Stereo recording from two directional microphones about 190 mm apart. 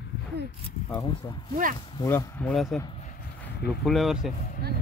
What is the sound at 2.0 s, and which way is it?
Speech, 10° left (ahead or behind).